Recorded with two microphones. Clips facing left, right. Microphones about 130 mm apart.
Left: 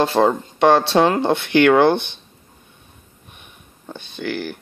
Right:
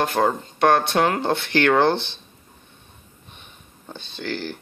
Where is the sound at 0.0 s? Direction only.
25° left (ahead or behind).